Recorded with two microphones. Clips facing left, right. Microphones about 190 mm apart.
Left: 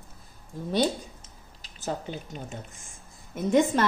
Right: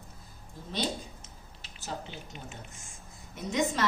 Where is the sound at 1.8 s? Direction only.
45° left (ahead or behind).